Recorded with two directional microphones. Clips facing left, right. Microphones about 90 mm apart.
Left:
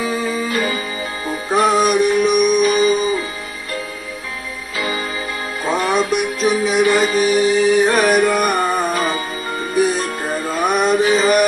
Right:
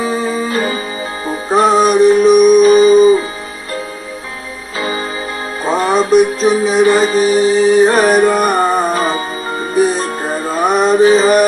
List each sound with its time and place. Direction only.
0.0 s music: 30° right (ahead or behind)
4.7 s music: 35° right (ahead or behind)